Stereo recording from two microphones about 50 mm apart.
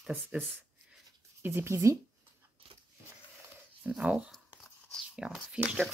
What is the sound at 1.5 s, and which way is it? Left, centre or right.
Speech, right.